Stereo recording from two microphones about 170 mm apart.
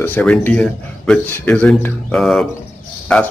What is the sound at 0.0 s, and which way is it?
A man's voice, 10° left (ahead or behind).